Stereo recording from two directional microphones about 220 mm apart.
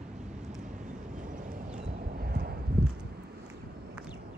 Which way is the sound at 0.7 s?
35° right (ahead or behind).